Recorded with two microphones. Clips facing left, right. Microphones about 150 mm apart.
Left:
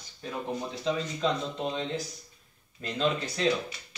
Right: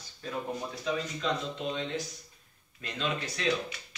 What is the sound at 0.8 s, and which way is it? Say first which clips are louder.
Speech: left 3 dB; 35° left (ahead or behind).